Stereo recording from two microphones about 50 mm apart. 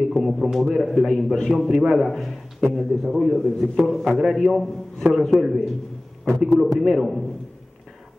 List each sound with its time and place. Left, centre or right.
0.1 s a man's voice: centre
1.1 s a man's voice: centre
1.5 s a man's voice: centre